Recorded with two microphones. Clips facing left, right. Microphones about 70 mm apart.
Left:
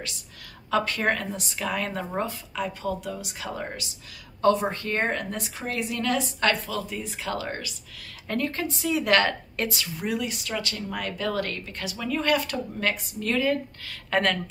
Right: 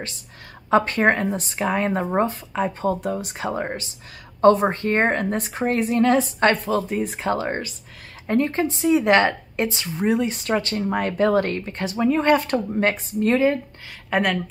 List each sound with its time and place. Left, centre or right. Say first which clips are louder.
0.7 s a woman's voice: right 7 dB; right
14.1 s speech: right 3 dB; centre